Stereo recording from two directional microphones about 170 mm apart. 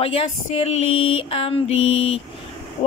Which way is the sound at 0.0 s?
35° left (ahead or behind).